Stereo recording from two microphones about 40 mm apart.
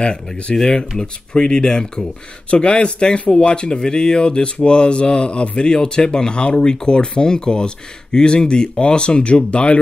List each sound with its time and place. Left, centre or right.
0.6 s speech: centre